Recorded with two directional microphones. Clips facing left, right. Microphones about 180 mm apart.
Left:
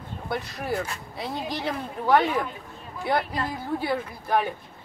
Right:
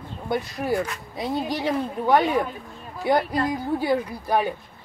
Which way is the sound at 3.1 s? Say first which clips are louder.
Right 5 dB; 40° right (ahead or behind).